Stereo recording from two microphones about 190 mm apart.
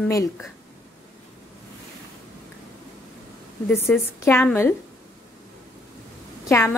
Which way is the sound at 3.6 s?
10° left (ahead or behind).